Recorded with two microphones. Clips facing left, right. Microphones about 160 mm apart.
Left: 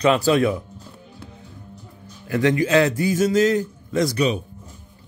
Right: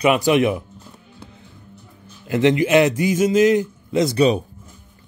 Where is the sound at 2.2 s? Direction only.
20° right (ahead or behind).